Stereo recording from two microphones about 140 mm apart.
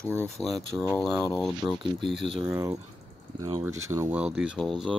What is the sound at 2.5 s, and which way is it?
Speech, 15° right (ahead or behind).